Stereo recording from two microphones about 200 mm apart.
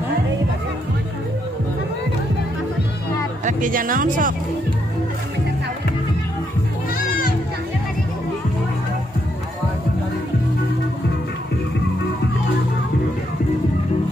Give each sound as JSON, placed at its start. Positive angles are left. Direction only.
{"t": 3.4, "sound": "speech", "side_deg": -40}